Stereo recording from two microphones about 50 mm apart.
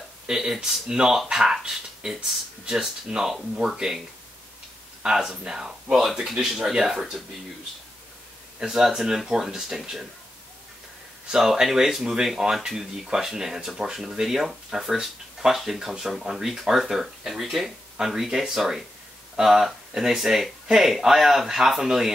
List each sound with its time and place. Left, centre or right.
0.3 s speech: centre
5.0 s speech: centre
8.5 s speech: centre
11.3 s speech: centre